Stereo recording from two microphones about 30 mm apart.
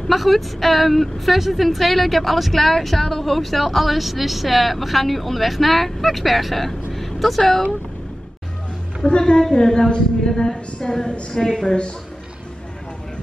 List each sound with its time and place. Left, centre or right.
0.1 s a woman's voice: centre
9.3 s a woman's voice: left
11.3 s a woman's voice: left